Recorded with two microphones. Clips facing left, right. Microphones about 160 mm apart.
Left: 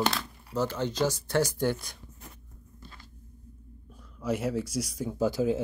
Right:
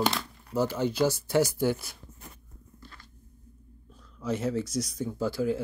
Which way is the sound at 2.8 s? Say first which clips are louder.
Left 1 dB; 20° left (ahead or behind).